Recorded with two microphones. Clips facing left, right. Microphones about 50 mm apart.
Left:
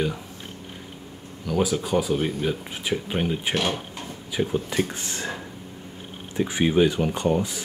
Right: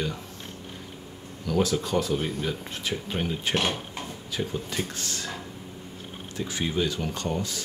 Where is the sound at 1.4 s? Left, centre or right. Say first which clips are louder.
Left 1 dB; centre.